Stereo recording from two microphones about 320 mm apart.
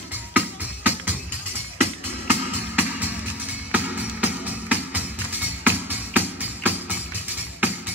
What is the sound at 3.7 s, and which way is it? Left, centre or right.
Music, centre.